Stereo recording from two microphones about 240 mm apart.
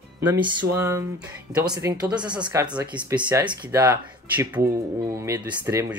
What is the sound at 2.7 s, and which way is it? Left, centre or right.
Speech, centre.